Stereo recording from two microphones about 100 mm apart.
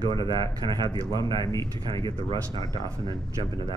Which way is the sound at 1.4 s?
35° left (ahead or behind).